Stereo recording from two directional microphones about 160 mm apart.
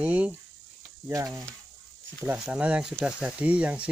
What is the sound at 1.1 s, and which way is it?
Speech, 20° right (ahead or behind).